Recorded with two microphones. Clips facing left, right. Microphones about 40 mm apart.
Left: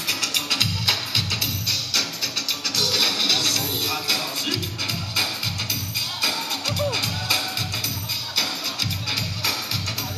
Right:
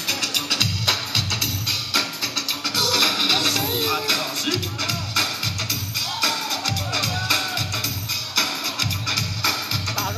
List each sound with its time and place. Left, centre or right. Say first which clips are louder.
2.9 s music: right 3 dB; centre
4.8 s music: right 1 dB; centre
9.1 s music: right 3 dB; centre